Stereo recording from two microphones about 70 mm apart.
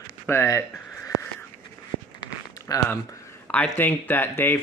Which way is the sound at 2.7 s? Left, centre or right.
Left.